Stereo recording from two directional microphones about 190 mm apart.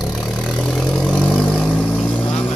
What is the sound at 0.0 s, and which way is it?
Vehicle, centre (ahead or behind).